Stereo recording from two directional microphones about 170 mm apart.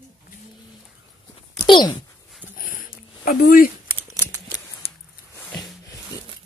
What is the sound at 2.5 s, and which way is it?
Dog, 55° left (ahead or behind).